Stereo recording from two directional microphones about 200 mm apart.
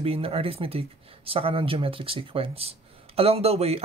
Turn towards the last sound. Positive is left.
turn(degrees=-30)  # may be behind; listen again after turning